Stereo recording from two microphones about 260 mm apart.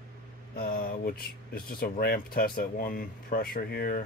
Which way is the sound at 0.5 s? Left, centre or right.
Left.